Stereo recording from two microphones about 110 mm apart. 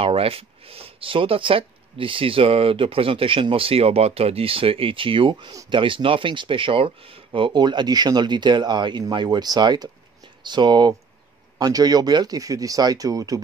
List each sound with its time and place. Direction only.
0.0 s speech: 60° right (ahead or behind); by 13.4 s 35° right (ahead or behind)